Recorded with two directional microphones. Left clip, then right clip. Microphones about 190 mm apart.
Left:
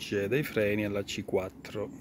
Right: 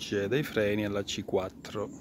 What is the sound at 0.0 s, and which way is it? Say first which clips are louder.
Speech: even; centre (ahead or behind).